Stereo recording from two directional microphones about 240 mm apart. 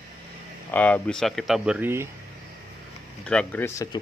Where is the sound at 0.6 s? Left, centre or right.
Centre.